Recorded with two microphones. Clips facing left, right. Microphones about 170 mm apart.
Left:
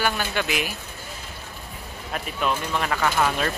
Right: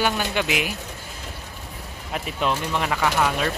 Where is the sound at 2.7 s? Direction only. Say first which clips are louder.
Right 1 dB; 15° right (ahead or behind).